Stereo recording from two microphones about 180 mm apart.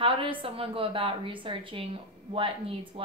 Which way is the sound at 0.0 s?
30° right (ahead or behind).